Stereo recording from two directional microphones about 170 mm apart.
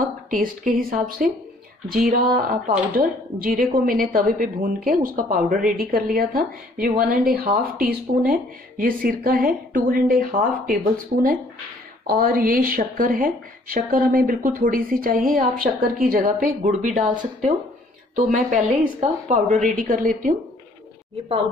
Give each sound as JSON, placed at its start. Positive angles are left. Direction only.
{"t": 0.3, "sound": "a woman's voice", "side_deg": -55}